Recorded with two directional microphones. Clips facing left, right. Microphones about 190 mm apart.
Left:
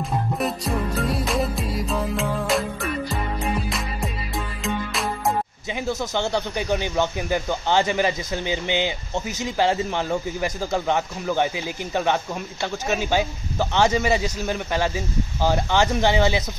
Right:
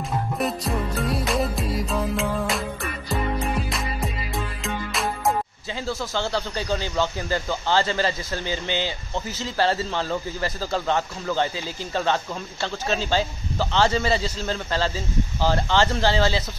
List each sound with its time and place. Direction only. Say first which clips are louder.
0.0 s music: left 1 dB; centre (ahead or behind)
5.7 s speech: left 4 dB; 20° left (ahead or behind)